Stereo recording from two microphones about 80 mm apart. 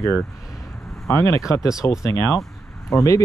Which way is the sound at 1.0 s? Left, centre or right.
Left.